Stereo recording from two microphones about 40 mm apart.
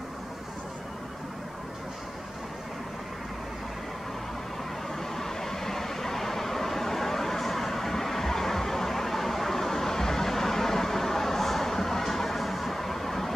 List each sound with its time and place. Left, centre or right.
5.1 s vehicle: centre